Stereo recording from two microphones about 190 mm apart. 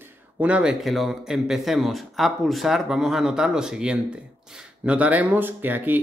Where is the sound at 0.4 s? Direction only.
5° right (ahead or behind).